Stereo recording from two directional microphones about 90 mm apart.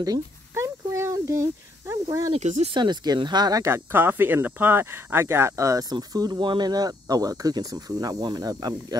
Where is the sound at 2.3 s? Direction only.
60° right (ahead or behind).